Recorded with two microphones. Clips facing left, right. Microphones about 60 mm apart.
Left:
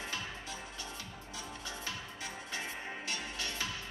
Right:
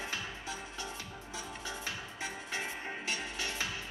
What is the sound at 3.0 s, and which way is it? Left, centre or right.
Music, right.